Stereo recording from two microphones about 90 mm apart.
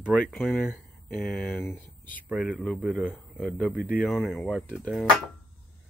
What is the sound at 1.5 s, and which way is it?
Speech, 20° left (ahead or behind).